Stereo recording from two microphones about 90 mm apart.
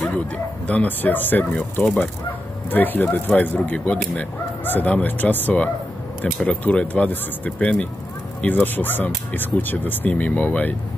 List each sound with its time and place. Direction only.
0.7 s speech: 15° left (ahead or behind)